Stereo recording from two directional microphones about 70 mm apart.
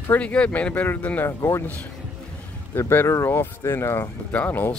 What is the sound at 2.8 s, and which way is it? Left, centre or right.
Speech, left.